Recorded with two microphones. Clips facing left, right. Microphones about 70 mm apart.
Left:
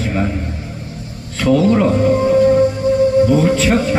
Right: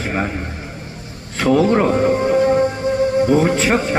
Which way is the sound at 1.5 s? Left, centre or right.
Right.